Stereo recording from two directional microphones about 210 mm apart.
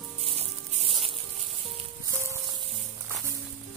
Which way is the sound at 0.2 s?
30° right (ahead or behind).